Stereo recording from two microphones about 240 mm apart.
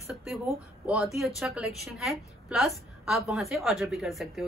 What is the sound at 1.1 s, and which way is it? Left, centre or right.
A woman's voice, centre.